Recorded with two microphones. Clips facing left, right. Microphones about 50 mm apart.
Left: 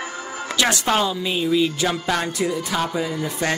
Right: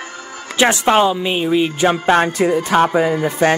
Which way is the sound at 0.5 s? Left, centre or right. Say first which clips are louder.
Right 7 dB; right.